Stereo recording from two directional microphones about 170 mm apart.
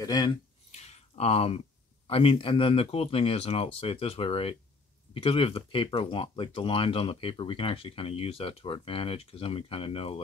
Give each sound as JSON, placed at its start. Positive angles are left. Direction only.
{"t": 0.0, "sound": "speech", "side_deg": 25}
{"t": 0.7, "sound": "a sound", "side_deg": 40}
{"t": 2.0, "sound": "speech", "side_deg": 35}